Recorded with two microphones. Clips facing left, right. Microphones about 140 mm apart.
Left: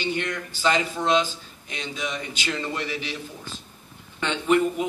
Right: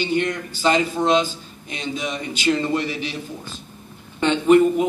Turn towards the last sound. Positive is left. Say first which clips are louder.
# right 7 dB
turn(degrees=-30)  # may be behind; listen again after turning